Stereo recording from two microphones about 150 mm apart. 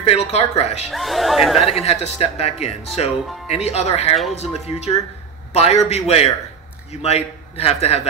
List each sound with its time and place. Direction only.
0.0 s speech: 45° left (ahead or behind)
0.8 s speech: centre (ahead or behind)
1.7 s a man's voice: 45° left (ahead or behind)